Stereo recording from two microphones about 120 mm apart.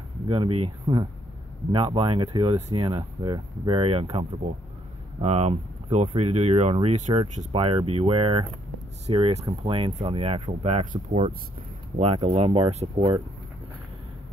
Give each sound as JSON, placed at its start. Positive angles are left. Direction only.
{"t": 0.3, "sound": "speech", "side_deg": -50}
{"t": 2.2, "sound": "speech", "side_deg": -35}
{"t": 5.2, "sound": "speech", "side_deg": -60}
{"t": 7.5, "sound": "speech", "side_deg": -50}
{"t": 12.0, "sound": "speech", "side_deg": -55}